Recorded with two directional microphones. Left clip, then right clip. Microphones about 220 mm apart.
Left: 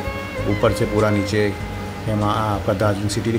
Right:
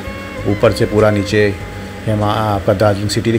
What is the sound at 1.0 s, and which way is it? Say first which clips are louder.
Speech: right 8 dB; 10° right (ahead or behind).